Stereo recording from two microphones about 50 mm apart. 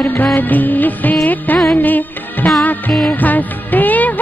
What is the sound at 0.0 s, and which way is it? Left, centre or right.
Music of bollywood, left.